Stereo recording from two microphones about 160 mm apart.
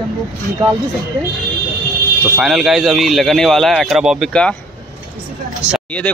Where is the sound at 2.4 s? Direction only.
Centre (ahead or behind).